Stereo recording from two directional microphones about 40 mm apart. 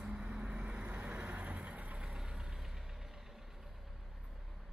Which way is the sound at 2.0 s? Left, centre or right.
Right.